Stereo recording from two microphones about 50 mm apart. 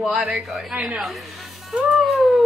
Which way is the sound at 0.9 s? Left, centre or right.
Centre.